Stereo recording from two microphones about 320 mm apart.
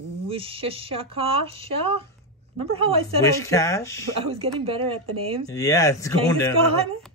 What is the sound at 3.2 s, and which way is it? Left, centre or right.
Speech, centre.